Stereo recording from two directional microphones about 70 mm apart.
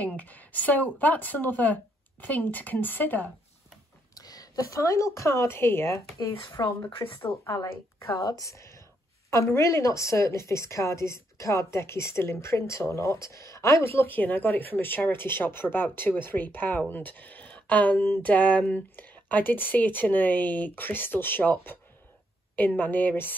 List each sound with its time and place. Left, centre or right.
0.0 s a woman's voice: left
4.1 s a woman's voice: left
8.1 s a woman's voice: left
8.4 s a woman's voice: left